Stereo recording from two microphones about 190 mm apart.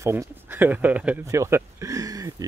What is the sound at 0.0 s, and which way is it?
Speech, 15° right (ahead or behind).